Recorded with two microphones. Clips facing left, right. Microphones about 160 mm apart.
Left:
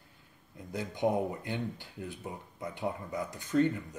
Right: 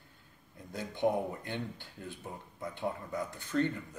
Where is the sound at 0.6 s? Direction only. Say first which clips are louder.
Left 1 dB; 15° left (ahead or behind).